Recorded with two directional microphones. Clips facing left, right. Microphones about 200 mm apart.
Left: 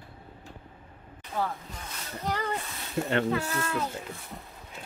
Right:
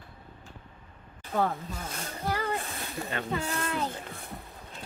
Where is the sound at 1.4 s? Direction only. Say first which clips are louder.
Right 4 dB; 50° right (ahead or behind).